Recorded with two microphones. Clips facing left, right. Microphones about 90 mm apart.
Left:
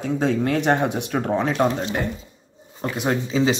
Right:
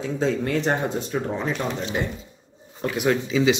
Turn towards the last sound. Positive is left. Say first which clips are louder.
# right 1 dB
turn(degrees=35)  # may be behind; listen again after turning